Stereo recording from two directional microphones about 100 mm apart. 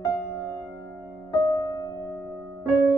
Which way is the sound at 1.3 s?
40° left (ahead or behind).